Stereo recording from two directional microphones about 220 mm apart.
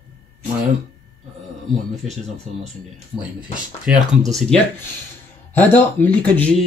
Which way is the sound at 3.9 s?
5° right (ahead or behind).